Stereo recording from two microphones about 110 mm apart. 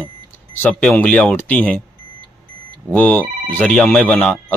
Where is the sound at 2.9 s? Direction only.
15° left (ahead or behind).